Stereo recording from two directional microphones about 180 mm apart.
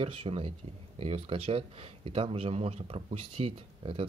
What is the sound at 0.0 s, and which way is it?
Speech, 30° right (ahead or behind).